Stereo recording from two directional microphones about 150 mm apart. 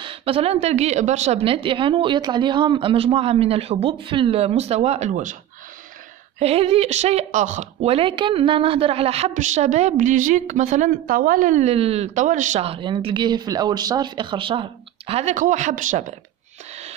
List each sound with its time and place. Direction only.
0.0 s a woman's voice: 35° right (ahead or behind); by 5.4 s 55° right (ahead or behind)
6.4 s a woman's voice: 40° right (ahead or behind)
9.3 s a woman's voice: 55° right (ahead or behind)
10.9 s speech: 75° right (ahead or behind); by 16.2 s 55° right (ahead or behind)